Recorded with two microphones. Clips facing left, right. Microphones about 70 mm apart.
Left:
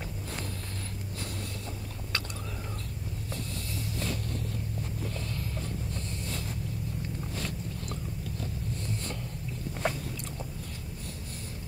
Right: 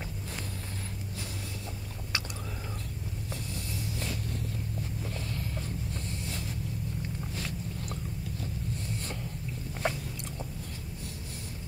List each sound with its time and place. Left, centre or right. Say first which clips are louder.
9.8 s biting: even; centre